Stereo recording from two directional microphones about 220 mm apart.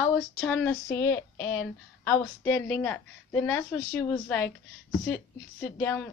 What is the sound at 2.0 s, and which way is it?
A woman's voice, 5° left (ahead or behind).